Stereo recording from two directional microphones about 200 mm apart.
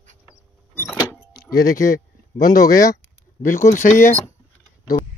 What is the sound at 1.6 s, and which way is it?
Speech, 45° left (ahead or behind).